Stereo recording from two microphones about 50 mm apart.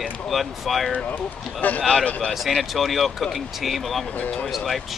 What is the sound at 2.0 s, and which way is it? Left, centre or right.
Speech, left.